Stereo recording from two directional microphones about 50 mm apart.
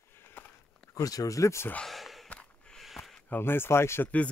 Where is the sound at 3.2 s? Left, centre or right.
Left.